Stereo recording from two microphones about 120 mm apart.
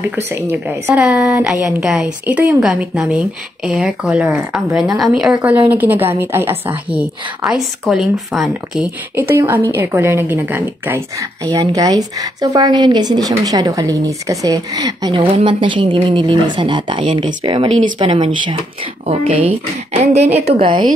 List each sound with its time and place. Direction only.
0.3 s a woman's voice: 20° right (ahead or behind); by 8.9 s 5° right (ahead or behind)
9.1 s a woman's voice: 20° right (ahead or behind)
11.5 s speech: 30° right (ahead or behind)
15.1 s a woman's voice: 45° right (ahead or behind)